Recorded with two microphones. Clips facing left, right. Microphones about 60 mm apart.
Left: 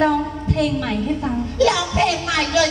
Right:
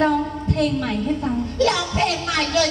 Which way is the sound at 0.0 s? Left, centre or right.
Left.